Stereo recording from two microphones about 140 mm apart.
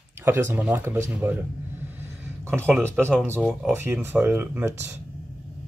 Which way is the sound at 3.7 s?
15° right (ahead or behind).